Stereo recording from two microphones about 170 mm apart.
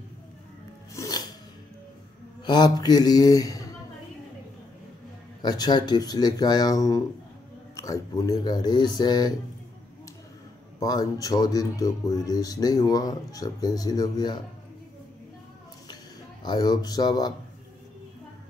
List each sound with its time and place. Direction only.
0.9 s filing: 20° left (ahead or behind)
2.4 s speech: 25° left (ahead or behind)
5.4 s speech: 25° left (ahead or behind)
10.8 s speech: 20° left (ahead or behind)
16.4 s speech: 25° left (ahead or behind)